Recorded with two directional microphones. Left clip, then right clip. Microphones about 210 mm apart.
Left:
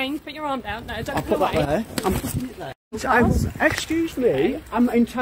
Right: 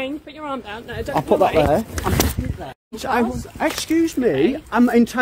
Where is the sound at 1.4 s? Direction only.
5° right (ahead or behind).